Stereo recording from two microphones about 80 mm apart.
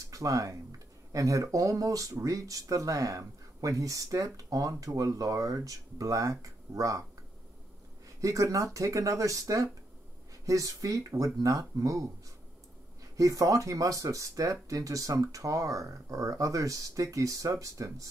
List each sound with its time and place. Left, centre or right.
0.0 s speech: right
8.2 s speech: right
13.1 s speech: right